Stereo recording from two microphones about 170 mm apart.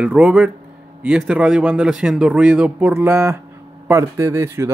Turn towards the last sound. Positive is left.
turn(degrees=-15)  # may be behind; listen again after turning